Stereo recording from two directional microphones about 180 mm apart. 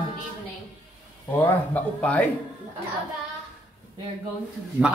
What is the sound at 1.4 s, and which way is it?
Speech, 10° left (ahead or behind).